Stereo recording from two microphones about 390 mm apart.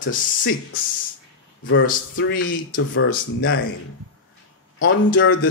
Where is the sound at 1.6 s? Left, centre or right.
Left.